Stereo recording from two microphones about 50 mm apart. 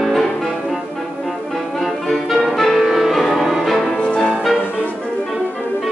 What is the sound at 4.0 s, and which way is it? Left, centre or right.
Music, left.